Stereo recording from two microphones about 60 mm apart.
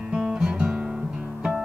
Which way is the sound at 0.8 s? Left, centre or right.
Centre.